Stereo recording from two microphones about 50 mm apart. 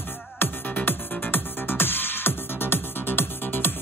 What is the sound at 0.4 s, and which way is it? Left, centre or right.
Music, left.